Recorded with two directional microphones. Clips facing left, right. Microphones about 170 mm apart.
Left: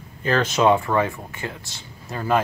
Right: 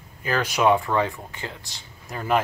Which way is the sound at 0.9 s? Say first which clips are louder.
Left 2 dB; 5° left (ahead or behind).